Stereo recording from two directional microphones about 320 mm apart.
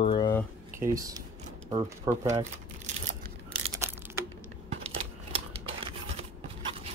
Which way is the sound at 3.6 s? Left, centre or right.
Centre.